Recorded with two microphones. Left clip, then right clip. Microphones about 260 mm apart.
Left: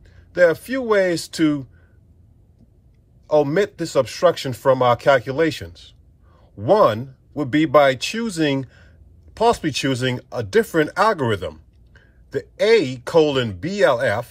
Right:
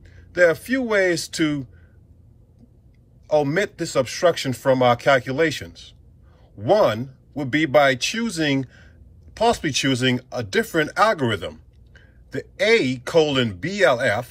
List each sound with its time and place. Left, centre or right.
0.0 s speech: left
3.3 s speech: left